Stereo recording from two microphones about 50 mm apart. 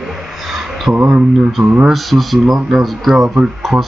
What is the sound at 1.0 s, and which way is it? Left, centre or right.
Speech, right.